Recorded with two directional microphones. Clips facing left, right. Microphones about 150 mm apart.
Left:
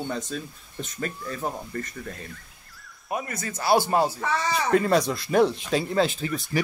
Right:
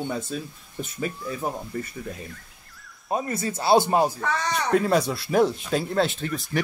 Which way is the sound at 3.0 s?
30° right (ahead or behind).